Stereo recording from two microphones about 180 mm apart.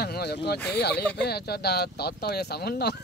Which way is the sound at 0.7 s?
65° left (ahead or behind).